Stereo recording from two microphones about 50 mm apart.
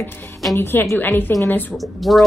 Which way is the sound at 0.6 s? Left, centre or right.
Left.